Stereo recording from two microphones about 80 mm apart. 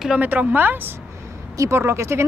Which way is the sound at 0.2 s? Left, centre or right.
Right.